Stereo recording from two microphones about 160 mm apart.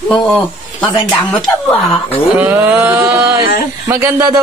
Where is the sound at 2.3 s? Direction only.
10° right (ahead or behind).